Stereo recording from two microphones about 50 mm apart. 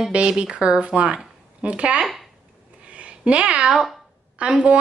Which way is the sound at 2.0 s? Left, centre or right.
Centre.